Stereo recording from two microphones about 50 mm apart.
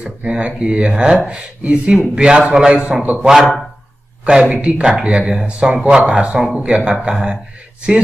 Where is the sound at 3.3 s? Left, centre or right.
Centre.